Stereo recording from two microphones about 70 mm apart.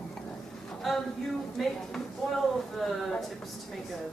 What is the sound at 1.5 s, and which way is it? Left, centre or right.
Speech, centre.